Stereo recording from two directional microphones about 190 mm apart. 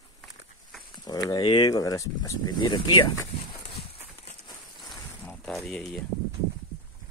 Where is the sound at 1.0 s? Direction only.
20° left (ahead or behind).